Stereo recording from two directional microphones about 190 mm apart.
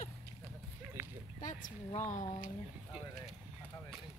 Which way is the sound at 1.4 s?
45° left (ahead or behind).